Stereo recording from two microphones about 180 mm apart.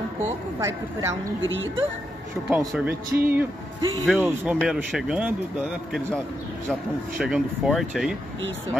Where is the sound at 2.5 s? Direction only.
10° right (ahead or behind).